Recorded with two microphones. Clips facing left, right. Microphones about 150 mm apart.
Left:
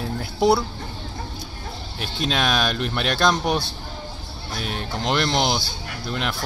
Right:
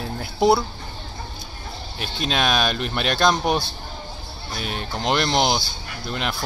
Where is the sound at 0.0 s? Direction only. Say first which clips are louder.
Even; 5° right (ahead or behind).